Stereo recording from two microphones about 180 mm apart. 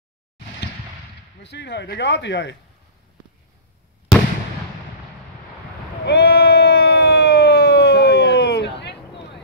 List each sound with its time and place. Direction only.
1.4 s speech: 75° left (ahead or behind)
6.0 s siren: 65° left (ahead or behind)